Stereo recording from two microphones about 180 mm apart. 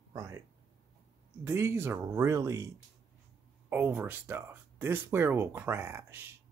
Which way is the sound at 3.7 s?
10° right (ahead or behind).